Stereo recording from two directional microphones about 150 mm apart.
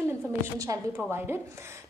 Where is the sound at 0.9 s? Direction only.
15° right (ahead or behind).